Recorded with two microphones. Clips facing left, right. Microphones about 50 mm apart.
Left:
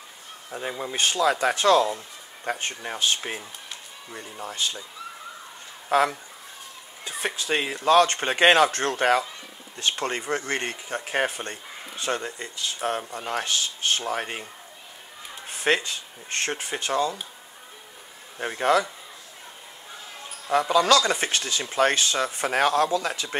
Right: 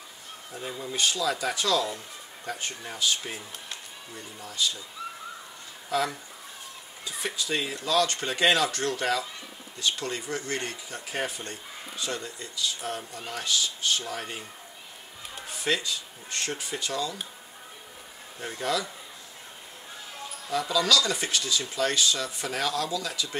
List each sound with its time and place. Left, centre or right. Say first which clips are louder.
0.5 s speech: left 4 dB; left
5.9 s speech: left 6 dB; left
15.4 s speech: left 5 dB; left
18.4 s speech: left 8 dB; left
20.4 s speech: left 6 dB; left